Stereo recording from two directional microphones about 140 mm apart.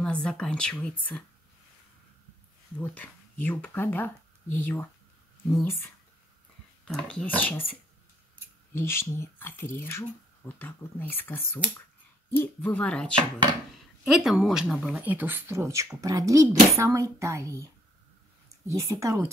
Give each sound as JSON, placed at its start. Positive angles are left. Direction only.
{"t": 0.0, "sound": "speech", "side_deg": 5}
{"t": 2.8, "sound": "speech", "side_deg": 15}
{"t": 6.8, "sound": "speech", "side_deg": 5}
{"t": 8.7, "sound": "speech", "side_deg": 20}
{"t": 15.0, "sound": "speech", "side_deg": -10}
{"t": 18.7, "sound": "speech", "side_deg": -20}